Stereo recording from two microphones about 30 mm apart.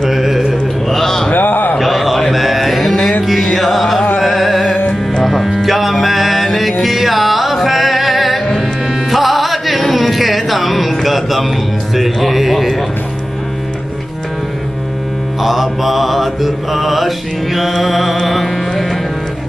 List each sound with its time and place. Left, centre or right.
0.1 s mantra: centre
0.8 s music: centre
1.3 s a sound: left
1.8 s a sound: centre
3.5 s music: centre
15.4 s mantra: centre
17.8 s music: centre